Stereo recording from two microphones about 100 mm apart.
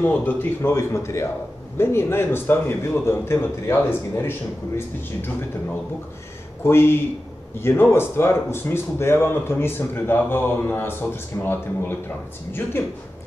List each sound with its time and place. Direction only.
0.0 s speech: 20° left (ahead or behind)
6.6 s speech: 25° left (ahead or behind)